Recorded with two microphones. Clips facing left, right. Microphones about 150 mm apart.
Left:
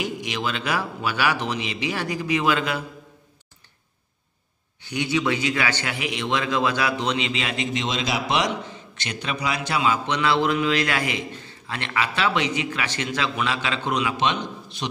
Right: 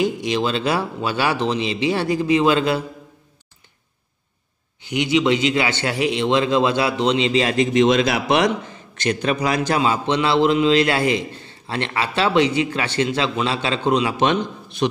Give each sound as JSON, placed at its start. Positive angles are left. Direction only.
{"t": 0.0, "sound": "a man's voice", "side_deg": -30}
{"t": 4.8, "sound": "a man's voice", "side_deg": -20}
{"t": 8.9, "sound": "a man's voice", "side_deg": -45}
{"t": 14.1, "sound": "a man's voice", "side_deg": -50}